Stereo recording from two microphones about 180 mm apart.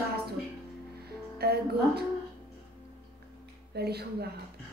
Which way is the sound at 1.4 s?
60° right (ahead or behind).